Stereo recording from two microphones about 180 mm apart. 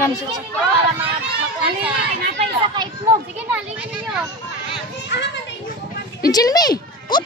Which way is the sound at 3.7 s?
5° right (ahead or behind).